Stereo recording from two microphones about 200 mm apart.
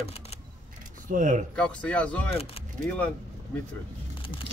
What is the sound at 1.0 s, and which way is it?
Speech, 40° right (ahead or behind).